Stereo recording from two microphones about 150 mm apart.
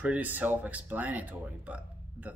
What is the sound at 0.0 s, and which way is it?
Speech, 10° right (ahead or behind).